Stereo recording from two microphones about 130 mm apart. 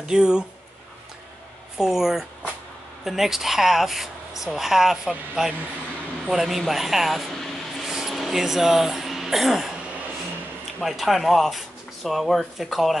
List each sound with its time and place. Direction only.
0.1 s speech: 5° right (ahead or behind)
1.8 s speech: 5° right (ahead or behind)
10.8 s speech: centre (ahead or behind)